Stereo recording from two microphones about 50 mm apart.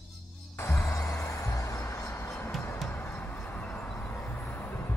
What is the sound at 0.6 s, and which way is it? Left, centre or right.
Music, left.